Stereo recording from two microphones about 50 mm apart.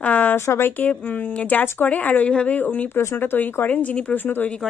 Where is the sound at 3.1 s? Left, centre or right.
Left.